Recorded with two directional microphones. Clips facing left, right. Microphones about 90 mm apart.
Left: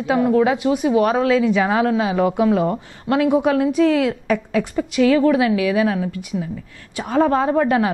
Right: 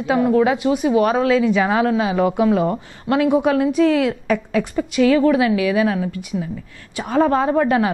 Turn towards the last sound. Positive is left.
turn(degrees=-15)  # may be behind; listen again after turning